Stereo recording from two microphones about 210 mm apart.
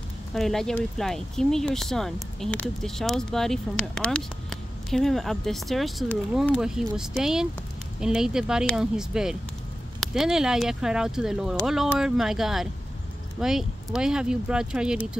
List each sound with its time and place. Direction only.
0.3 s speech: centre (ahead or behind)